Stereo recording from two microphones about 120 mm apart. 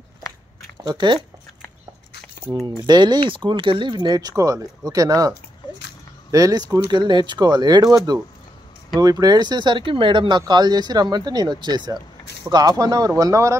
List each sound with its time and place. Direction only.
0.8 s speech: 40° right (ahead or behind)
2.6 s speech: 35° right (ahead or behind)
6.3 s speech: 30° right (ahead or behind)